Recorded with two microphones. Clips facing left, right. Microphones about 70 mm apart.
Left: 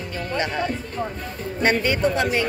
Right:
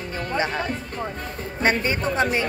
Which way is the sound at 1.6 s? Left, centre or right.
Right.